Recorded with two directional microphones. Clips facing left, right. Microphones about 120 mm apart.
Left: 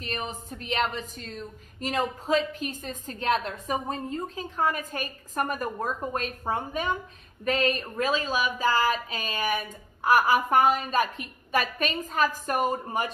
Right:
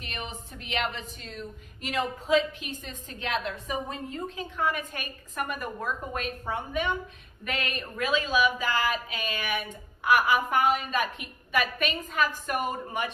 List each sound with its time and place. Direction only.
0.0 s a woman's voice: 40° left (ahead or behind)